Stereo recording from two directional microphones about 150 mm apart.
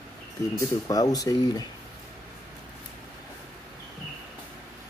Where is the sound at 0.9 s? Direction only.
25° left (ahead or behind).